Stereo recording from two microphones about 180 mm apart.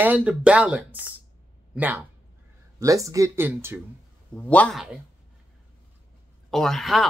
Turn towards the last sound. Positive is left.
turn(degrees=0)  # may be behind; listen again after turning